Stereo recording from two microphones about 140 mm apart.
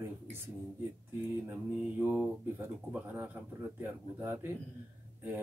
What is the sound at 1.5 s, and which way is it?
Speech, 10° right (ahead or behind).